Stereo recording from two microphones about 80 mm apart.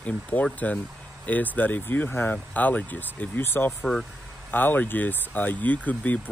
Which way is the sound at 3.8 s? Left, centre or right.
Centre.